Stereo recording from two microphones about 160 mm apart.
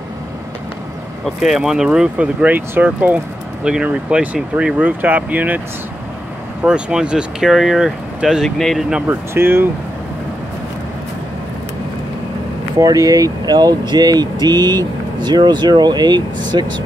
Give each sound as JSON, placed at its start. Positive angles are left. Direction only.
{"t": 1.2, "sound": "speech", "side_deg": 0}
{"t": 6.6, "sound": "speech", "side_deg": -5}
{"t": 9.0, "sound": "speech", "side_deg": -15}
{"t": 12.7, "sound": "speech", "side_deg": -20}